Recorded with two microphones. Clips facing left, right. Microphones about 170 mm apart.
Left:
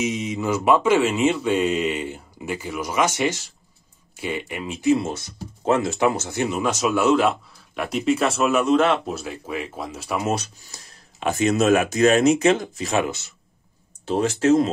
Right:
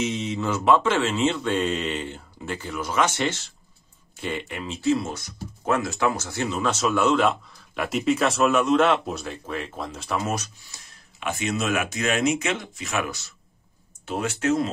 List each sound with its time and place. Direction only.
0.0 s speech: 10° left (ahead or behind)
10.2 s speech: 30° left (ahead or behind)
13.0 s speech: 20° left (ahead or behind)
14.0 s speech: 35° left (ahead or behind)